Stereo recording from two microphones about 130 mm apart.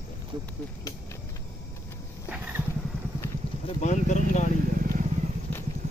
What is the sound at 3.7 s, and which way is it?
Speech, 65° left (ahead or behind).